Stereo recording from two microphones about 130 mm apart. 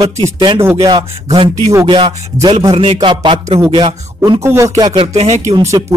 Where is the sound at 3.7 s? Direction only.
35° right (ahead or behind).